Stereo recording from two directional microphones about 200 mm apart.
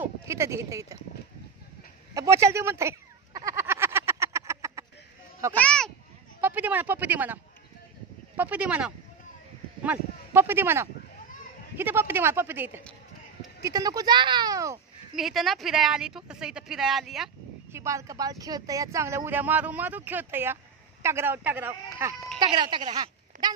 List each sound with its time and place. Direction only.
0.0 s speech: 15° right (ahead or behind)
2.1 s a sound: 15° right (ahead or behind)
5.6 s speech: 5° left (ahead or behind)
6.4 s speech: 10° right (ahead or behind)
8.4 s speech: 5° right (ahead or behind)
15.1 s speech: centre (ahead or behind)
17.7 s speech: 15° right (ahead or behind)
22.4 s a woman's voice: 20° right (ahead or behind)